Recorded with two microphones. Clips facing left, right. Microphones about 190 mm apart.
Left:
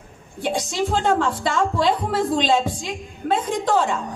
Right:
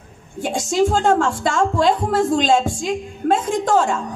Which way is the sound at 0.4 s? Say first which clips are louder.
Right 5 dB; 45° right (ahead or behind).